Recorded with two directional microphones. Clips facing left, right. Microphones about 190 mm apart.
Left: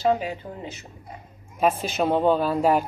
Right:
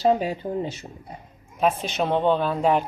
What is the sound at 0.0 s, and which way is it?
Speech, 35° right (ahead or behind).